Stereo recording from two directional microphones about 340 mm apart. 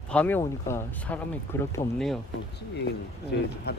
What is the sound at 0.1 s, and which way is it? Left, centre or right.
Speech, centre.